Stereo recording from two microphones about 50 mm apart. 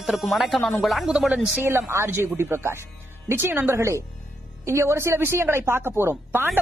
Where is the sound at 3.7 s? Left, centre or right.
Right.